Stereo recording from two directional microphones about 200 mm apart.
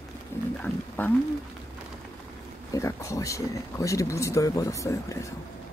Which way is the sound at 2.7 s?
15° left (ahead or behind).